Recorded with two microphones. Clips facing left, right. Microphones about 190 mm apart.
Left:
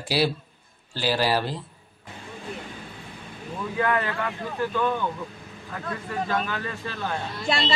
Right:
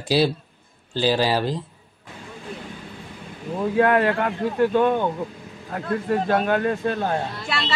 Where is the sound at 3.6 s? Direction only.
60° right (ahead or behind); by 7.2 s 45° right (ahead or behind).